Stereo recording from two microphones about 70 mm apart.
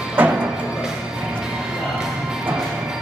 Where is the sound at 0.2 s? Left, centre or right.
Right.